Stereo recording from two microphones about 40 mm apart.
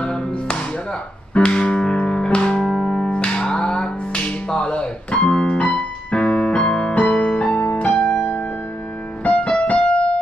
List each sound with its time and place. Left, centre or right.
0.0 s music: left
2.6 s music: centre
3.1 s music: left
4.5 s a sound: centre
4.7 s keyboard: left
7.0 s music: left
8.2 s music: left
9.2 s music: left